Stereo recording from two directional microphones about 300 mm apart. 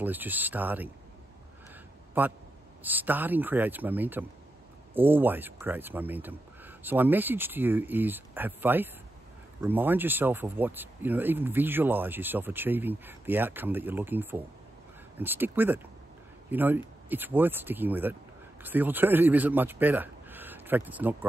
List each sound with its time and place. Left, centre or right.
0.0 s speech: centre
2.2 s a man's voice: centre